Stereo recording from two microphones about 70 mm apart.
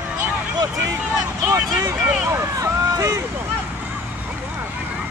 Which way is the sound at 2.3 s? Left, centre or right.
Right.